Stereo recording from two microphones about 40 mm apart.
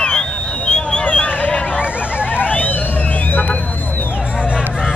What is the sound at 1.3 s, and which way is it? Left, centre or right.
Hubbub, left.